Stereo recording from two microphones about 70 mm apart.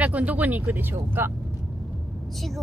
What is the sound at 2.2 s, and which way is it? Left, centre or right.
Speech, centre.